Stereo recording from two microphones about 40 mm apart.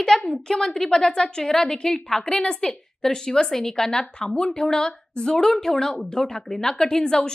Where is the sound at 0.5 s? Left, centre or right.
Centre.